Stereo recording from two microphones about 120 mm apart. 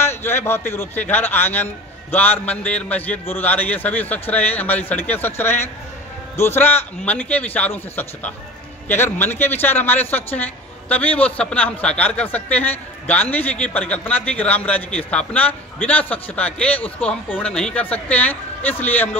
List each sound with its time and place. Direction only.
0.0 s a man's voice: 20° left (ahead or behind)